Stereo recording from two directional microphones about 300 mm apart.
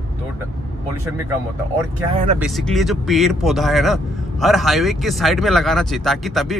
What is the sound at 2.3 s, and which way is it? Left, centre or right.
Speech, centre.